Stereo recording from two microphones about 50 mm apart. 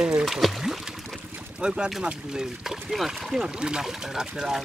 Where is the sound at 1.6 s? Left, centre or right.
Centre.